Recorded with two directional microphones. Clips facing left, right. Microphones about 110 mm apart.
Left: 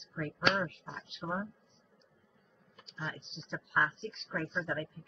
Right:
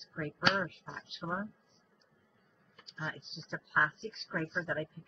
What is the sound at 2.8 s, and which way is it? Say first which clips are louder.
Speech: even; centre (ahead or behind).